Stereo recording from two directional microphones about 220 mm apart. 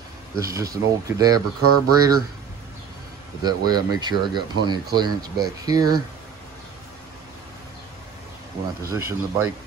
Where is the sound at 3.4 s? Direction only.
20° right (ahead or behind).